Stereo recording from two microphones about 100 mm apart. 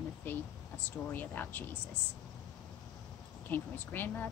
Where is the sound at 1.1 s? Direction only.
20° left (ahead or behind).